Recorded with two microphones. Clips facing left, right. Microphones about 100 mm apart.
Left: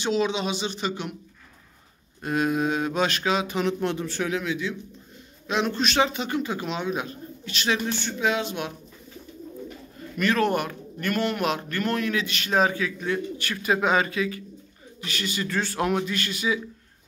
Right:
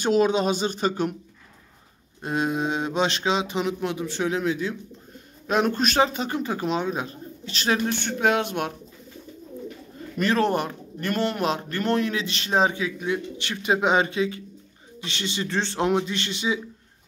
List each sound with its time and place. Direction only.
0.0 s speech: 45° right (ahead or behind)
2.2 s a man's voice: 25° right (ahead or behind)
3.6 s speech: 10° right (ahead or behind)
4.3 s a man's voice: 35° right (ahead or behind); by 8.7 s 55° right (ahead or behind)
10.1 s a man's voice: 30° right (ahead or behind)